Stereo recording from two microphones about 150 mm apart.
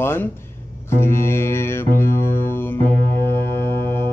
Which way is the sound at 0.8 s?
15° left (ahead or behind).